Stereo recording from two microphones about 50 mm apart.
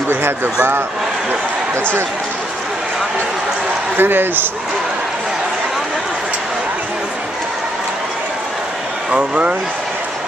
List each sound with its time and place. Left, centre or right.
4.0 s a man's voice: right
9.1 s speech: right